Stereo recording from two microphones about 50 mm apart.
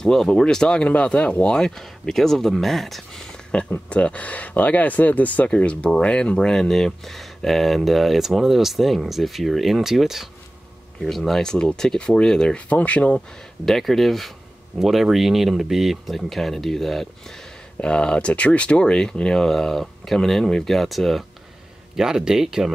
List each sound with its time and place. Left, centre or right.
0.0 s speech: centre
3.5 s speech: left; by 10.2 s centre
11.0 s speech: centre
12.6 s speech: left
13.7 s speech: centre
17.7 s speech: left; by 21.2 s centre
21.9 s speech: centre